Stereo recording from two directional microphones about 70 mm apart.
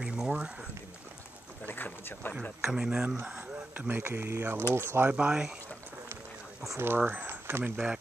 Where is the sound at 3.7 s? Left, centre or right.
Right.